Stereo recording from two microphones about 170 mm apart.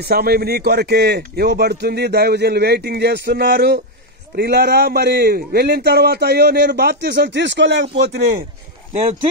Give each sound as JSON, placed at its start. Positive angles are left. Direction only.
{"t": 0.0, "sound": "speech", "side_deg": -65}